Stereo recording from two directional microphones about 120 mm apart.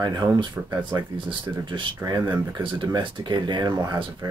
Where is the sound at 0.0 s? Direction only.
30° right (ahead or behind).